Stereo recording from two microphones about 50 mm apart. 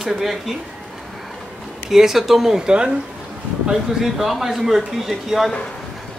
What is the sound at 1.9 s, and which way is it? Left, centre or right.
Speech, centre.